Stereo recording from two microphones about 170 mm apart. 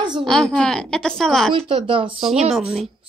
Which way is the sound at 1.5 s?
30° right (ahead or behind).